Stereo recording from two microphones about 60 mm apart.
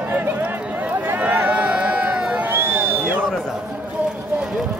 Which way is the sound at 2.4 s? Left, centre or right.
Right.